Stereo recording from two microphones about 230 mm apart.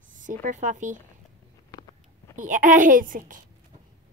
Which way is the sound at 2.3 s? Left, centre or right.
Right.